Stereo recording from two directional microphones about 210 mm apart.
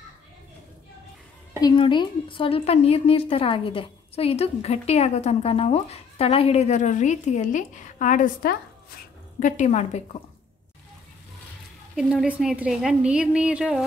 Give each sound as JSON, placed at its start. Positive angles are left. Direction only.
{"t": 1.6, "sound": "a woman's voice", "side_deg": 20}
{"t": 11.9, "sound": "a woman's voice", "side_deg": 0}